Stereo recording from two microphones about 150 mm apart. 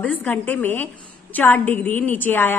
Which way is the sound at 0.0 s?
10° left (ahead or behind).